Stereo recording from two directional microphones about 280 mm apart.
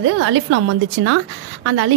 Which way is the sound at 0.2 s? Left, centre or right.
Right.